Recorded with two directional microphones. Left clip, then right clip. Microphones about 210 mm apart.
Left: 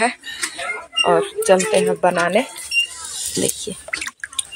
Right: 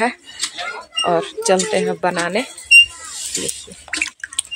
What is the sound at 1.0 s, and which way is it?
Speech, 10° right (ahead or behind).